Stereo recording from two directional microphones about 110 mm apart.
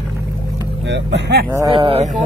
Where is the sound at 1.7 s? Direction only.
50° right (ahead or behind).